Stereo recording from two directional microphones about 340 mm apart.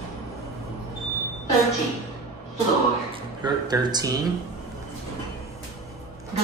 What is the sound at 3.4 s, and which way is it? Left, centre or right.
Speech, centre.